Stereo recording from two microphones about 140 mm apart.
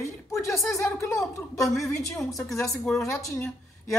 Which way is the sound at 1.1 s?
Centre (ahead or behind).